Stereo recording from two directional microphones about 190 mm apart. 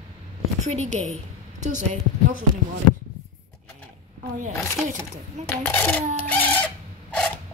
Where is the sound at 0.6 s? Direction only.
35° right (ahead or behind).